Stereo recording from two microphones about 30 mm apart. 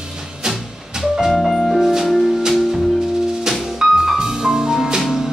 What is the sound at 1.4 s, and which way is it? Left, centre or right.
Music, centre.